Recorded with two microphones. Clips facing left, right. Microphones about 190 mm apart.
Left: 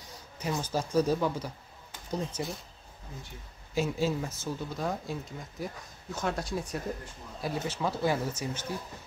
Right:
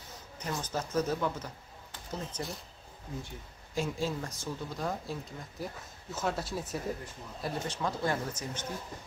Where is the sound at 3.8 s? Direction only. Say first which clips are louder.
Left 4 dB; 5° left (ahead or behind).